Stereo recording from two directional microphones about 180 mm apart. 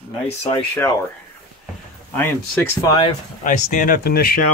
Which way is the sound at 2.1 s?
10° left (ahead or behind).